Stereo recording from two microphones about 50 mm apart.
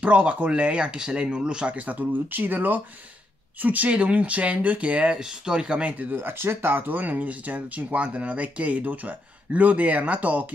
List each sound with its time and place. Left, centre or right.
0.0 s speech: right
6.1 s speech: right